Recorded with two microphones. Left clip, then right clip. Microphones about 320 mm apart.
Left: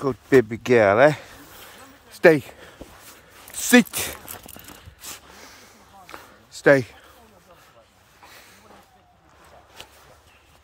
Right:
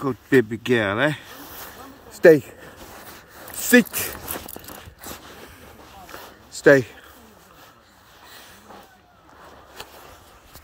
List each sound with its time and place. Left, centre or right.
0.0 s speech: centre
2.2 s speech: centre
6.1 s a sound: centre